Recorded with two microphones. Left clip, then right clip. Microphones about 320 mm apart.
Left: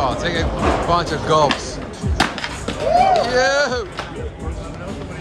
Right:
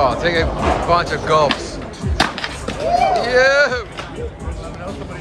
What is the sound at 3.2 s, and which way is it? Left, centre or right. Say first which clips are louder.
Speech: right 3 dB; centre.